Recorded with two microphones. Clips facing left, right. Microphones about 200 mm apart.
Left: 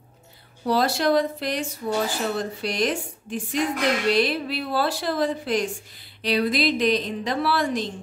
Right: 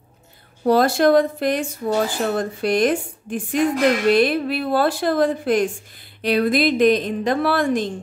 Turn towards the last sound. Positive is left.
turn(degrees=-50)  # may be behind; listen again after turning